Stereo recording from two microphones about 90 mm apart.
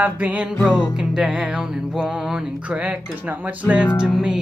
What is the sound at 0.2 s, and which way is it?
Music, 15° right (ahead or behind).